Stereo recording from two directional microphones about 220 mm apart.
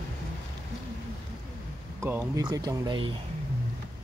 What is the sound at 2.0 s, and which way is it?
Speech, 10° right (ahead or behind).